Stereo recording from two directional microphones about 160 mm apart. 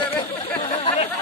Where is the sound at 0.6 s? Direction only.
35° left (ahead or behind).